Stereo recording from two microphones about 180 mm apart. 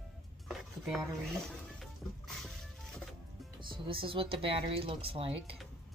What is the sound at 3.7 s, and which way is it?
Speech, 30° right (ahead or behind).